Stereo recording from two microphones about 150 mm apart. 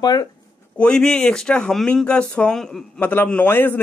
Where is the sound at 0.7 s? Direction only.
5° left (ahead or behind).